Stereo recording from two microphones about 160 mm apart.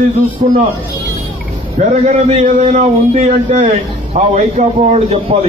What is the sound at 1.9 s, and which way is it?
A man's voice, 40° right (ahead or behind).